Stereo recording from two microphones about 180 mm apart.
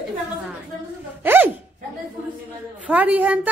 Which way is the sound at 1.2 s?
10° right (ahead or behind).